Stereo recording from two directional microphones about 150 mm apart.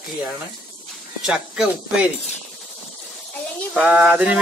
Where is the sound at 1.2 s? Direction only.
5° right (ahead or behind).